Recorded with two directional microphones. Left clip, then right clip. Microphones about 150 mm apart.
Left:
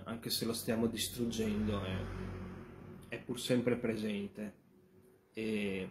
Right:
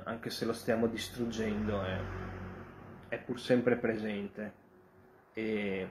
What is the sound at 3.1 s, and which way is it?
Speech, 25° left (ahead or behind).